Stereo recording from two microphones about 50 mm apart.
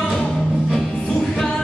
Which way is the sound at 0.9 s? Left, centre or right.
Centre.